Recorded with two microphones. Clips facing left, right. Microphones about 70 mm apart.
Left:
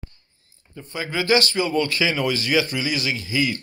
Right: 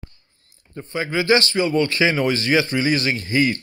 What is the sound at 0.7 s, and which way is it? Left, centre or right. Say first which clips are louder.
Speech: right 4 dB; right.